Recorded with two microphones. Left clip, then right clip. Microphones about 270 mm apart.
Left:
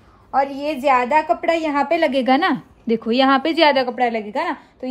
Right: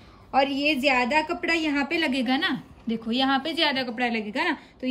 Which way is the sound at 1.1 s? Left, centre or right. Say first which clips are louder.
Left 7 dB; left.